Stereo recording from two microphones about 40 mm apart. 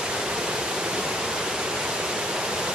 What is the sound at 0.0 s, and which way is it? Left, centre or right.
Waterfall, right.